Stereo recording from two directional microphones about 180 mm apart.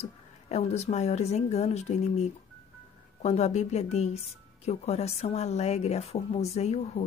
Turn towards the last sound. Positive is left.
turn(degrees=35)  # may be behind; listen again after turning